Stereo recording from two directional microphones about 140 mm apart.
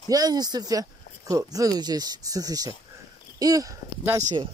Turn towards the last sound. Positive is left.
turn(degrees=-25)  # may be behind; listen again after turning